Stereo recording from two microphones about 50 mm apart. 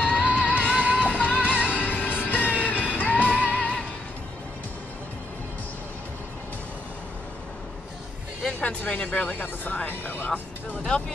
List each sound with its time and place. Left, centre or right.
0.0 s music: left
8.4 s vehicle: centre
8.6 s speech: left
10.8 s speech: centre